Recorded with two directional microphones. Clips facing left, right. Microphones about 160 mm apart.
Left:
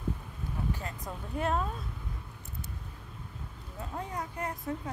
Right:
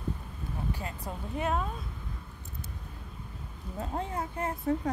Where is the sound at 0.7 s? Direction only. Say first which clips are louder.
Right 2 dB; 10° right (ahead or behind).